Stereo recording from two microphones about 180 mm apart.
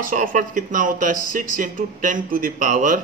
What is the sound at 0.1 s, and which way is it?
A man's voice, 45° right (ahead or behind).